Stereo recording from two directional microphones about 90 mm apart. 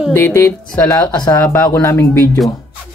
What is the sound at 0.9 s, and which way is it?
Speech, 50° left (ahead or behind).